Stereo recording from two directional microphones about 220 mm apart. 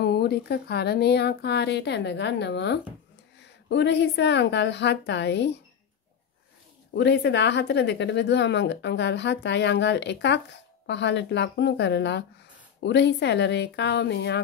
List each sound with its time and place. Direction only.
0.0 s speech: 45° left (ahead or behind)
7.0 s speech: 50° left (ahead or behind)